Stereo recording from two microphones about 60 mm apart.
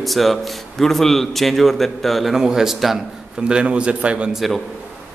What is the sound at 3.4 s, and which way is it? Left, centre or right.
Speech, centre.